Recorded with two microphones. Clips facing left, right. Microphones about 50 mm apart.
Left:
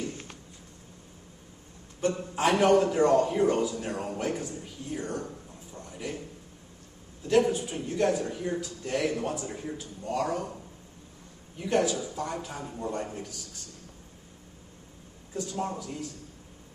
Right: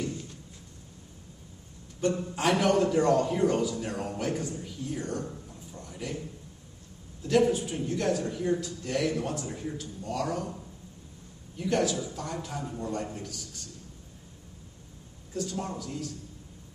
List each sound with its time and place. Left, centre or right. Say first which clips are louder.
2.0 s a man's voice: even; centre
3.7 s a man's voice: even; left
5.9 s a sound: left 1 dB; centre
7.2 s speech: even; centre
10.0 s a man's voice: left 2 dB; left
11.5 s a man's voice: left 1 dB; left
15.3 s a man's voice: left 1 dB; centre